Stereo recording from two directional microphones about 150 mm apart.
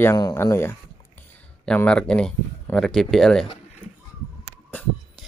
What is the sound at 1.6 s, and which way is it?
Speech, 5° left (ahead or behind).